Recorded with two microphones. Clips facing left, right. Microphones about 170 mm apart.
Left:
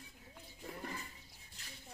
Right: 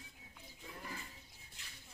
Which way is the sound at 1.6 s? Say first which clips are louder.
Left 4 dB; 40° left (ahead or behind).